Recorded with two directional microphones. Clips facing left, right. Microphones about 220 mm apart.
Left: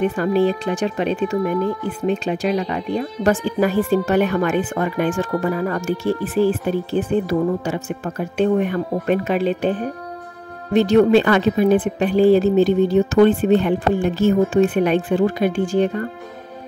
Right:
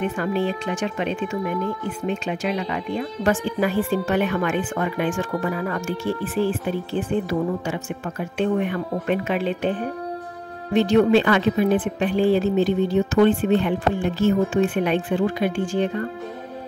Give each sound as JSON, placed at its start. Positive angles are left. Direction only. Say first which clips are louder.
{"t": 0.1, "sound": "speech", "louder": "left 6 dB", "side_deg": 40}